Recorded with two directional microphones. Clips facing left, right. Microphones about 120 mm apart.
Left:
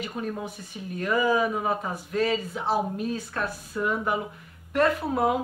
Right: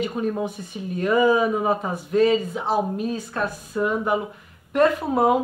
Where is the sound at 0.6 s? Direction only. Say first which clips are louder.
Right 6 dB; 20° right (ahead or behind).